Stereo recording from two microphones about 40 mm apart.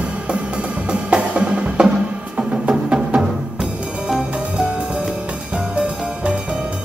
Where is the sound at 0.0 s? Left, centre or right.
Right.